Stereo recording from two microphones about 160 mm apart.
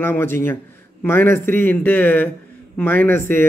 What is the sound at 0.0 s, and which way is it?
Speech, 15° left (ahead or behind).